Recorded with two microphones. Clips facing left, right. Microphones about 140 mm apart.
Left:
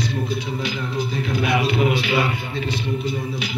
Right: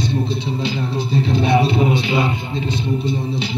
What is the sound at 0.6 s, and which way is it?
Speech, 30° right (ahead or behind).